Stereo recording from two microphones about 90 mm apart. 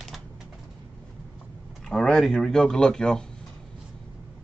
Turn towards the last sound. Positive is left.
turn(degrees=5)  # may be behind; listen again after turning